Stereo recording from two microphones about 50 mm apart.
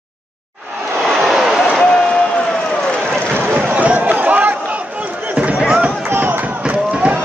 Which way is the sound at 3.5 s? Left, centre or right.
Right.